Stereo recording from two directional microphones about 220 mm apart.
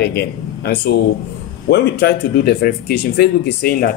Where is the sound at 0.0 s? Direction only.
45° left (ahead or behind).